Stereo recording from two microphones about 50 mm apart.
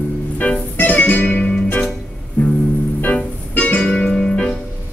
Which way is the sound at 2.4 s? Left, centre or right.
Left.